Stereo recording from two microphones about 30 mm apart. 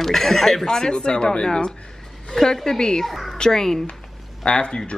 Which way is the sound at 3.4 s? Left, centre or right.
Centre.